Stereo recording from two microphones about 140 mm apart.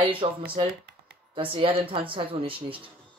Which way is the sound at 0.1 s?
40° right (ahead or behind).